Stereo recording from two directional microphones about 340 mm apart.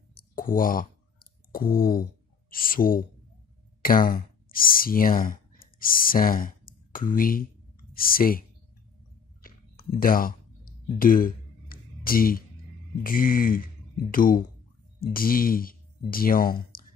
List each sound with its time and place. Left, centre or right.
0.1 s clicking: left
2.5 s speech: left
9.4 s a sound: left
13.0 s speech: left